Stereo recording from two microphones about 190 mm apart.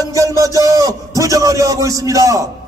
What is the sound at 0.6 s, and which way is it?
A man's voice, 20° right (ahead or behind).